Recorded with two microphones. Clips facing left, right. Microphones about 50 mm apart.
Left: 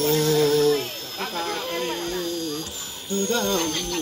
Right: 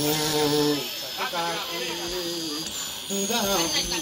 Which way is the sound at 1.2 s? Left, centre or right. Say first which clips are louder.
Right 1 dB; right.